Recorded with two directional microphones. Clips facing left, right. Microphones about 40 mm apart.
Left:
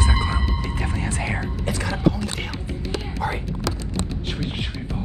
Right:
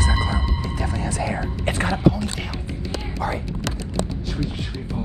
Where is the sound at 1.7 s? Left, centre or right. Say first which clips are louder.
Right 4 dB; right.